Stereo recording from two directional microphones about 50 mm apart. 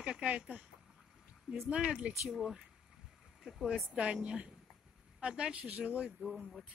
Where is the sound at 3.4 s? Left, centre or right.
Centre.